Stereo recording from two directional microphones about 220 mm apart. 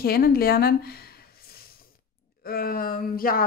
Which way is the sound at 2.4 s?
40° left (ahead or behind).